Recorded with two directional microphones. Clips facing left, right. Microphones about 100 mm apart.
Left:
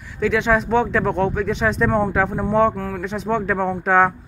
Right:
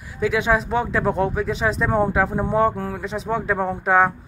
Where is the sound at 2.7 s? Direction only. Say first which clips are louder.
Left 1 dB; 25° right (ahead or behind).